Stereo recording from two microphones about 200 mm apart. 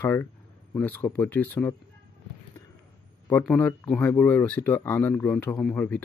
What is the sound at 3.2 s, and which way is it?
Speech, 10° left (ahead or behind).